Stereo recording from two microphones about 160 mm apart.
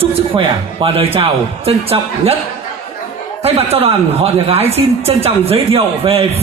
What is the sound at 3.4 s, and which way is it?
A woman's voice, 40° right (ahead or behind).